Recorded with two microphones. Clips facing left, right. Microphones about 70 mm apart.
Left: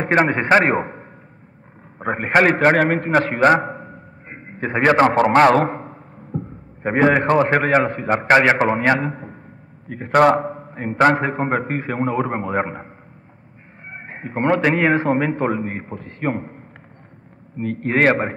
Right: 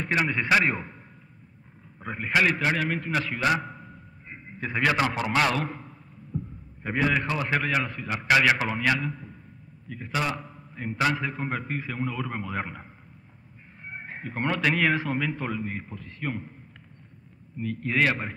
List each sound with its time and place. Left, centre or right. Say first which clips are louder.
0.0 s a man's voice: left 9 dB; left